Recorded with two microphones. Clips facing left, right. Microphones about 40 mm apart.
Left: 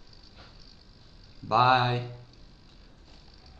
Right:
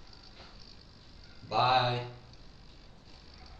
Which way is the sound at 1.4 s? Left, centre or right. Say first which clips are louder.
Left 5 dB; left.